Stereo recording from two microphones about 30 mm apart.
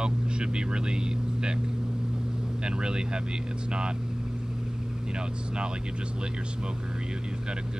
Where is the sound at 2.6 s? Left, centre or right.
Right.